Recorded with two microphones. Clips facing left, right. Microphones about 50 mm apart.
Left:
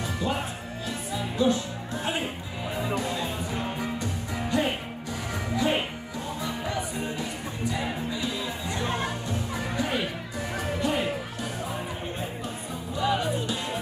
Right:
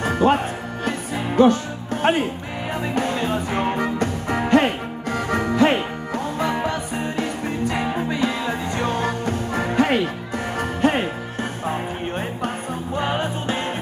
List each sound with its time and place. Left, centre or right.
0.0 s music: right
10.6 s music: right
12.9 s music: right